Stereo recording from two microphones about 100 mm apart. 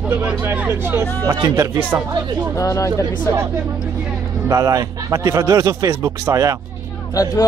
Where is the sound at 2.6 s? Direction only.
35° left (ahead or behind).